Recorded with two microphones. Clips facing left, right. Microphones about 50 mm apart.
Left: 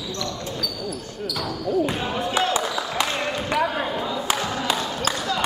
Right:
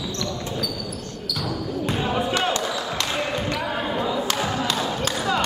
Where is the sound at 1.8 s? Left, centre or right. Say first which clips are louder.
Right 1 dB; centre.